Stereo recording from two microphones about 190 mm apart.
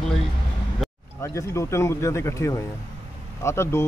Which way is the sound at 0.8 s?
Centre (ahead or behind).